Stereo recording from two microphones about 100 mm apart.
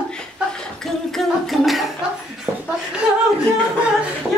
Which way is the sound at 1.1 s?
Centre (ahead or behind).